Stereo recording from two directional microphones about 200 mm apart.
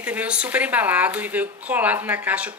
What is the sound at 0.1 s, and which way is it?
Speech, 5° right (ahead or behind).